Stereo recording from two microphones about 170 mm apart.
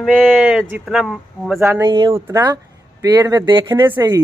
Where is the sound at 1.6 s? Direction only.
15° right (ahead or behind).